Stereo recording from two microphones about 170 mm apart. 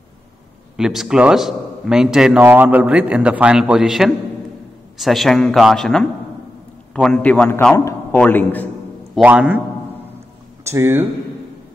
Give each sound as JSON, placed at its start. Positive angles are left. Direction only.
{"t": 0.7, "sound": "a man's voice", "side_deg": -5}
{"t": 9.1, "sound": "a man's voice", "side_deg": -10}
{"t": 10.6, "sound": "speech", "side_deg": -15}